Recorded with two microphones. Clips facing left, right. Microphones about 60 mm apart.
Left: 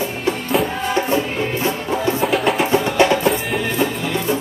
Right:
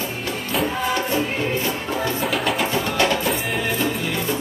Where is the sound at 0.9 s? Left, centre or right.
Left.